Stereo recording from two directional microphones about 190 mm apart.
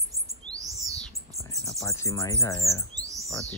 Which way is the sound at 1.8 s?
15° left (ahead or behind).